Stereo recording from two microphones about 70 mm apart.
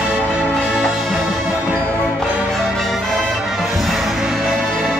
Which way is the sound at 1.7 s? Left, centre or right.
Right.